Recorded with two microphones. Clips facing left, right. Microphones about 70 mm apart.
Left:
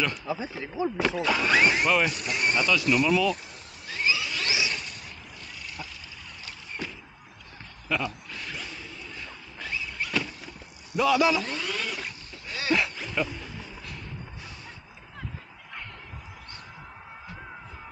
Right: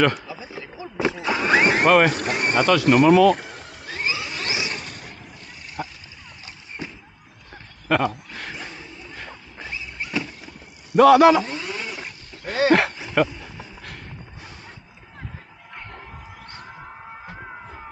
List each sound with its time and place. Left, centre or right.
0.9 s speech: centre
1.7 s speech: right
2.6 s speech: right
3.8 s a sound: right
5.8 s vehicle: right
6.8 s a sound: right
7.9 s speech: right
8.6 s a sound: right
11.0 s speech: right
11.4 s a sound: centre
12.4 s dog: right
13.2 s speech: right